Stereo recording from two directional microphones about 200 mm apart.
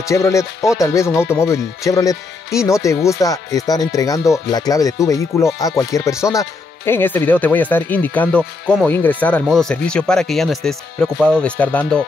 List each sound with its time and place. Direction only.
0.1 s speech: 15° left (ahead or behind)